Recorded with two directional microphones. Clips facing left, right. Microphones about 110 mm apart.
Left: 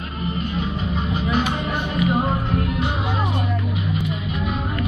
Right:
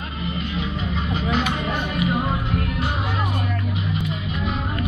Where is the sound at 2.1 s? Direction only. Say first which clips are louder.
Left 2 dB; 30° left (ahead or behind).